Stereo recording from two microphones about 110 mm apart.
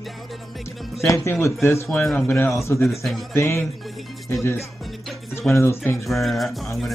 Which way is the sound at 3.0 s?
Centre (ahead or behind).